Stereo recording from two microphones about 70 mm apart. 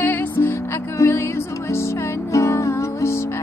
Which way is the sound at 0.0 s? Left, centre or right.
Left.